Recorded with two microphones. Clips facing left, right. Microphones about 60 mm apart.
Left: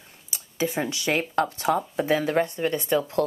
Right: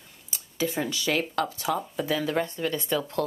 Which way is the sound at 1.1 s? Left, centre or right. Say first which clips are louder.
Left 4 dB; left.